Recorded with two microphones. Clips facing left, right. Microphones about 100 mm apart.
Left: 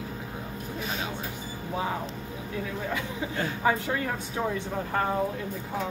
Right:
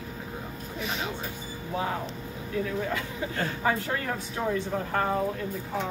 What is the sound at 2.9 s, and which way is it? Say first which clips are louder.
Speech: even; 10° left (ahead or behind).